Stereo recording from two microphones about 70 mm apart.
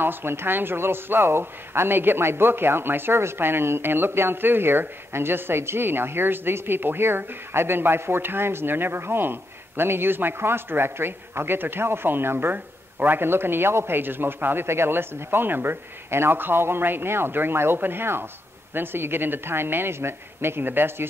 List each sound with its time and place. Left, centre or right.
0.0 s speech: right